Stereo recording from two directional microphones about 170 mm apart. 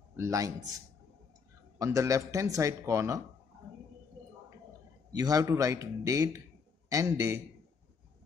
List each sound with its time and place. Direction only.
0.1 s a man's voice: 20° right (ahead or behind)
1.8 s speech: 20° right (ahead or behind)
5.1 s a man's voice: 20° right (ahead or behind)